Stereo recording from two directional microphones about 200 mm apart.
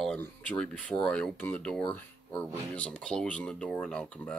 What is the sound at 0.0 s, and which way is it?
Speech, 5° left (ahead or behind).